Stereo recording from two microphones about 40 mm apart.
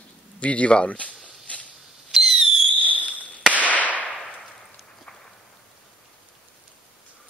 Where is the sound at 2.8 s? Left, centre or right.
Left.